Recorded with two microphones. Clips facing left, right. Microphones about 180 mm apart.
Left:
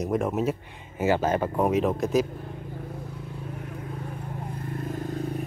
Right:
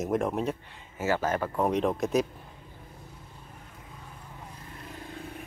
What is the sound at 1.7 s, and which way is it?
Speech, centre (ahead or behind).